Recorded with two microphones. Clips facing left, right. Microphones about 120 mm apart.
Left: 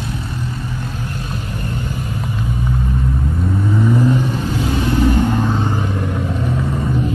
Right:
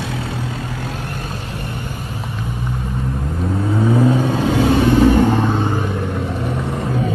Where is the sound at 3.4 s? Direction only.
30° right (ahead or behind).